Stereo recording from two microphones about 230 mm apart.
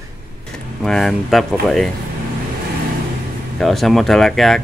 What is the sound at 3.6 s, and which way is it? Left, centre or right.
Speech, centre.